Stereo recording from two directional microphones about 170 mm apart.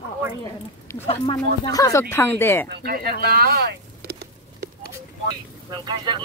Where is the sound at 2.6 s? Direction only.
65° right (ahead or behind).